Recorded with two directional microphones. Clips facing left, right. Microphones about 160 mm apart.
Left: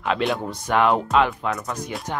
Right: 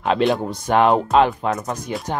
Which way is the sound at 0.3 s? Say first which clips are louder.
Right 4 dB; 30° right (ahead or behind).